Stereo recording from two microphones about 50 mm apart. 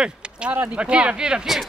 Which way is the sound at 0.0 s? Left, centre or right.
Centre.